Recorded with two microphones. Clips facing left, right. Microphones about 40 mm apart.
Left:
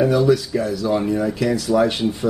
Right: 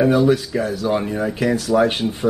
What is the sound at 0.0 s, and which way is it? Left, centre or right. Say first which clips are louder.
Speech: right 1 dB; right.